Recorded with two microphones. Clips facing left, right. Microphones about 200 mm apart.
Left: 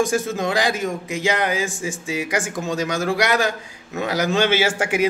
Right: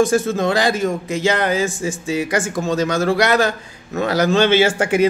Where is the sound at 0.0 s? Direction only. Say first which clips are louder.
Right 5 dB; 15° left (ahead or behind).